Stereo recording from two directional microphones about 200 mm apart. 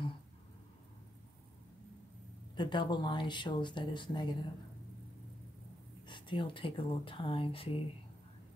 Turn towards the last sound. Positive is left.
turn(degrees=25)  # may be behind; listen again after turning